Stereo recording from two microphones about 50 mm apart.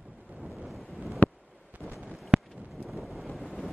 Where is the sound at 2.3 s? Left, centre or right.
Centre.